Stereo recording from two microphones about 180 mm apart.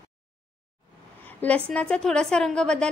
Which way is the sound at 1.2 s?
10° left (ahead or behind).